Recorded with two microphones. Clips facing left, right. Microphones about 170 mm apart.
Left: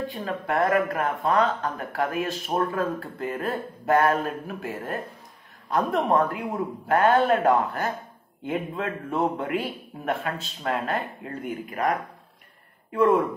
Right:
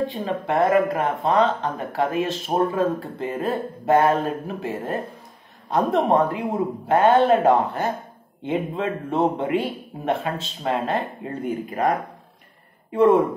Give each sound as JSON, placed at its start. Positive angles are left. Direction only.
{"t": 0.1, "sound": "a man's voice", "side_deg": -25}